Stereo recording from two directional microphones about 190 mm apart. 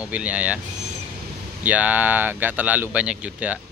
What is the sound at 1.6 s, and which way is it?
Speech, 10° right (ahead or behind).